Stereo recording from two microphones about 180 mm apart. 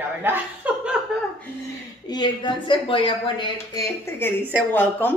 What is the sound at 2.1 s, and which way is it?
Speech, 25° left (ahead or behind).